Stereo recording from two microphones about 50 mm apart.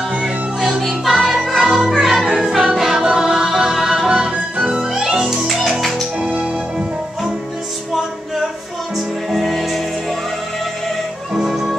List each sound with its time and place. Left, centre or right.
0.1 s music: centre
6.2 s music: centre
8.9 s music: centre
11.3 s music: centre